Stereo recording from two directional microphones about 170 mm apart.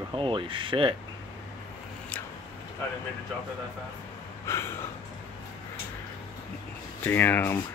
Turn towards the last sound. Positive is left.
turn(degrees=15)  # may be behind; listen again after turning